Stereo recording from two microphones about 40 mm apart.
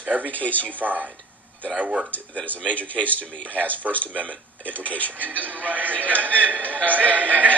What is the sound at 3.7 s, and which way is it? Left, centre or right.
Speech, left.